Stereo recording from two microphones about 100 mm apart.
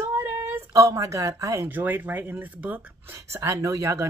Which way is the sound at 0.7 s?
35° right (ahead or behind).